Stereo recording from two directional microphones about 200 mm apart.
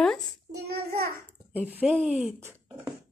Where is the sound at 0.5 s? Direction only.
50° right (ahead or behind).